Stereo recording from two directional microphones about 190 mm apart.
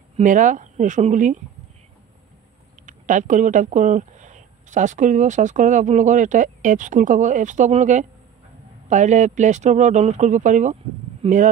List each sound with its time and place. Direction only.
0.2 s speech: 40° right (ahead or behind)
2.9 s speech: 40° right (ahead or behind)